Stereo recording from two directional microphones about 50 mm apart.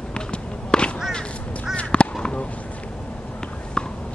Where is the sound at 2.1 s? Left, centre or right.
Centre.